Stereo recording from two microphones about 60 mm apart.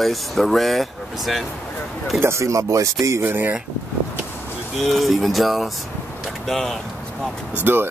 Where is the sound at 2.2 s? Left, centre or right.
Right.